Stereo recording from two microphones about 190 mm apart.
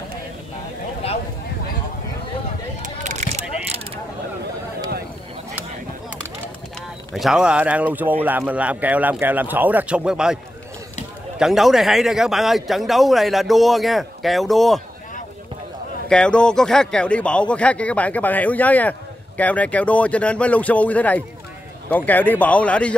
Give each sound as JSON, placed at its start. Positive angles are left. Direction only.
{"t": 2.8, "sound": "mechanisms", "side_deg": -40}
{"t": 7.2, "sound": "a man's voice", "side_deg": 0}
{"t": 16.1, "sound": "speech", "side_deg": 5}